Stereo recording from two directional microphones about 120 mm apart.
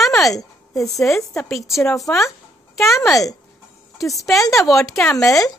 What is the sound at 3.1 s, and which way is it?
Speech, 30° left (ahead or behind).